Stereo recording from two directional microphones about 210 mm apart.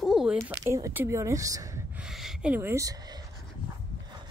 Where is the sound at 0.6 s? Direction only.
15° right (ahead or behind).